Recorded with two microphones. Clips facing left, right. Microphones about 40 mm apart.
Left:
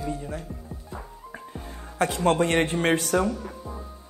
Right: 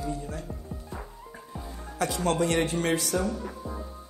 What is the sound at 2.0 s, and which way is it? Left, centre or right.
A man's voice, left.